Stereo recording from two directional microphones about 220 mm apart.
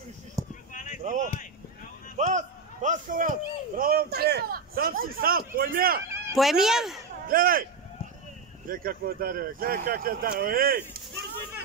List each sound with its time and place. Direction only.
0.4 s a sound: 15° right (ahead or behind)
0.7 s a sound: 35° left (ahead or behind)
1.0 s a man's voice: 35° right (ahead or behind)
6.3 s speech: centre (ahead or behind)
7.2 s speech: 40° right (ahead or behind)
8.6 s speech: 40° right (ahead or behind)